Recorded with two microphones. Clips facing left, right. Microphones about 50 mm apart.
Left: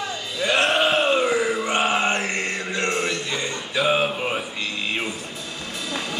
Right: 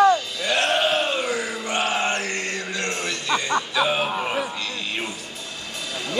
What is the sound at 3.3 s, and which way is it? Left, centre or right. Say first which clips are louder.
Music: right 5 dB; right.